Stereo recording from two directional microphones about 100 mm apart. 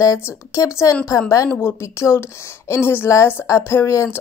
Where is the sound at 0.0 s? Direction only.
35° left (ahead or behind).